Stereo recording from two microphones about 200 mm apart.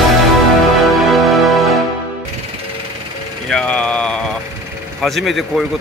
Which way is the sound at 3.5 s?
5° left (ahead or behind).